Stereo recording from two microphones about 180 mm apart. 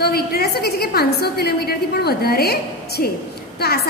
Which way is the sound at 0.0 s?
60° left (ahead or behind).